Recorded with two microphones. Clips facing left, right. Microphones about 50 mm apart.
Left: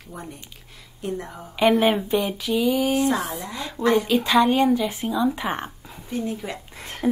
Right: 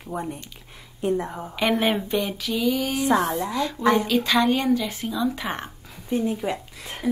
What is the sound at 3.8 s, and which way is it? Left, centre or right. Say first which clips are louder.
Speech: left 1 dB; right.